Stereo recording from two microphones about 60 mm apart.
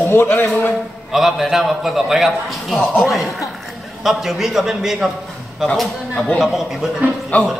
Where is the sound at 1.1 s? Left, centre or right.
Centre.